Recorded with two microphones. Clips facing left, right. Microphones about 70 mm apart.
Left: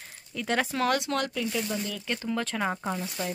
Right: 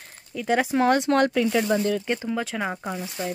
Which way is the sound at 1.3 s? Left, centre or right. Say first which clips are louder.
Right 9 dB; right.